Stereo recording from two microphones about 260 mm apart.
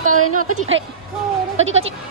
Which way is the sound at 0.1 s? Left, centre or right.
Right.